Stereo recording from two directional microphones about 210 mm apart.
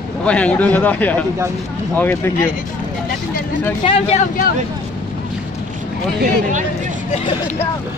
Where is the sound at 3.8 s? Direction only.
30° left (ahead or behind).